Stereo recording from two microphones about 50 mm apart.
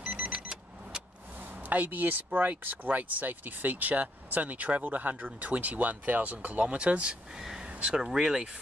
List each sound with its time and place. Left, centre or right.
0.0 s vehicle: centre
1.7 s speech: right; by 8.5 s centre